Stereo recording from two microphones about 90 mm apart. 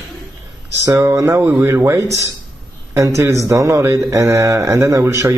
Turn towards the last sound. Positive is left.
turn(degrees=-30)  # may be behind; listen again after turning